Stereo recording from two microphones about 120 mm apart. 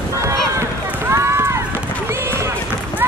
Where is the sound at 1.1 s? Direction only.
20° right (ahead or behind).